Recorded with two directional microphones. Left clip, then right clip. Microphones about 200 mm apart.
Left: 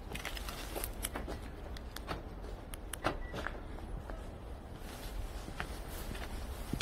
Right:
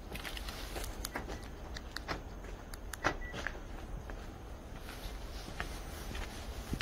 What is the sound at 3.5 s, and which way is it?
Vehicle, 10° left (ahead or behind).